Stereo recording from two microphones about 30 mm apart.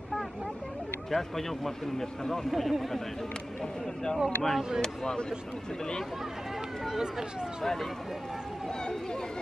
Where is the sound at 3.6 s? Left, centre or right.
Centre.